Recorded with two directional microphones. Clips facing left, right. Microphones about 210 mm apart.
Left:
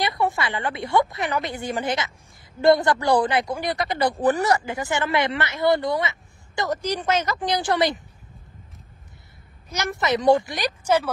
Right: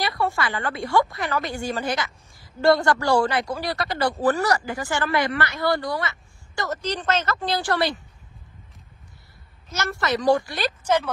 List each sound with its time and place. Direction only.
0.0 s a woman's voice: 20° left (ahead or behind)
9.7 s a woman's voice: 15° left (ahead or behind)